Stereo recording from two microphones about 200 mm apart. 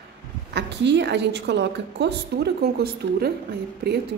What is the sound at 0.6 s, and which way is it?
A woman's voice, 60° right (ahead or behind).